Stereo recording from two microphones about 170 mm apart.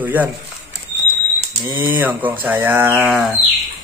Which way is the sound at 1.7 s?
10° right (ahead or behind).